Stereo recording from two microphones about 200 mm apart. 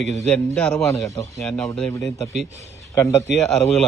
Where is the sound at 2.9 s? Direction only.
15° left (ahead or behind).